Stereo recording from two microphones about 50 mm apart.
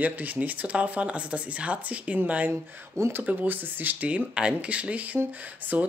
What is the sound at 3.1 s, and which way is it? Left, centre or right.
Speech, right.